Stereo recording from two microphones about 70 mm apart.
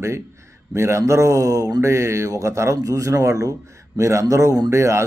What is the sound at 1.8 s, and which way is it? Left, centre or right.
Speech, right.